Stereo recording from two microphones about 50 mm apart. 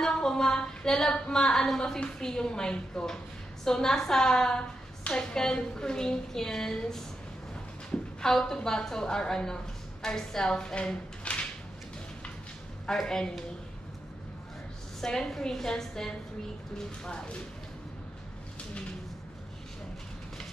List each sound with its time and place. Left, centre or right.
0.0 s a sound: centre
1.1 s a woman's voice: centre
13.0 s a woman's voice: centre
15.0 s a woman's voice: centre